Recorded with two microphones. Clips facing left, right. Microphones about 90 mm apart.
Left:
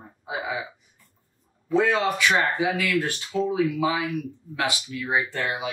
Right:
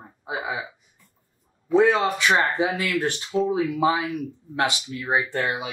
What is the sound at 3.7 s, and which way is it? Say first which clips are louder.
Speech: right 2 dB; 35° right (ahead or behind).